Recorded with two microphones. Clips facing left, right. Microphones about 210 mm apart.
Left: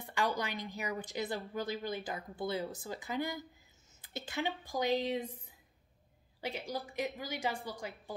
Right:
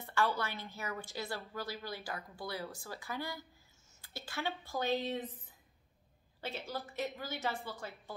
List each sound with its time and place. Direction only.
0.0 s a woman's voice: 15° left (ahead or behind)
6.4 s a woman's voice: 15° left (ahead or behind)